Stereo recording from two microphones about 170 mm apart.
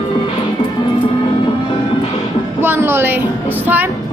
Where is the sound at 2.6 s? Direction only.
15° right (ahead or behind).